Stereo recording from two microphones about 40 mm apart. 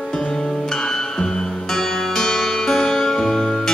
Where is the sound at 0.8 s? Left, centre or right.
Centre.